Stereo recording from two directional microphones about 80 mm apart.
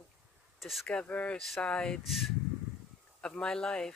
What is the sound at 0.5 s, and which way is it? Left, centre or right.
Speech, centre.